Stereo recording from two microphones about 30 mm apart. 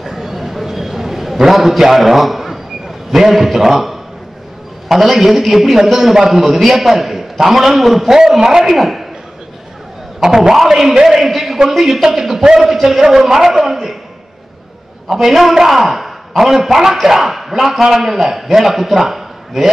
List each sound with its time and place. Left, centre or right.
0.0 s a sound: centre
3.1 s a man's voice: centre
8.1 s a man's voice: centre
8.6 s a man's voice: centre
10.2 s a man's voice: centre
12.5 s a man's voice: centre
15.0 s a man's voice: centre